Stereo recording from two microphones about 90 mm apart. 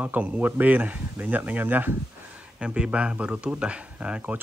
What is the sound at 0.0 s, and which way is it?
Speech, 20° right (ahead or behind).